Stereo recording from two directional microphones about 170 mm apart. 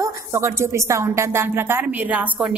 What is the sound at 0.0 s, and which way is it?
A woman's voice, 15° right (ahead or behind).